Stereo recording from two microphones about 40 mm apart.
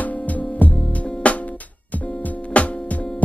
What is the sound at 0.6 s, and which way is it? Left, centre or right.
Music, left.